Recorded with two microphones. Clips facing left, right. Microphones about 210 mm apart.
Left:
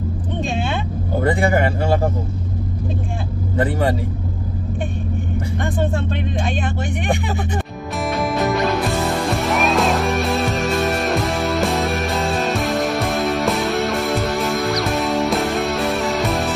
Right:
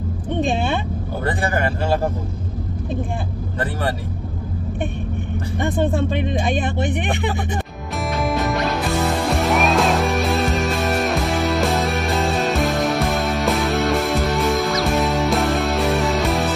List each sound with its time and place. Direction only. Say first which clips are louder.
6.5 s speech: right 3 dB; 60° right (ahead or behind)
8.1 s music: left 2 dB; centre (ahead or behind)